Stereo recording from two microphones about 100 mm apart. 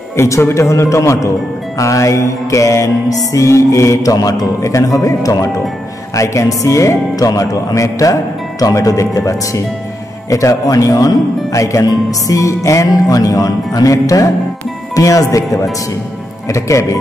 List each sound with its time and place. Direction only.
0.1 s speech: 25° left (ahead or behind)